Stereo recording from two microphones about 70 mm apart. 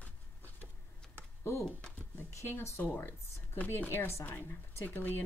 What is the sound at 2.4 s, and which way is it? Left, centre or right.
Speech, left.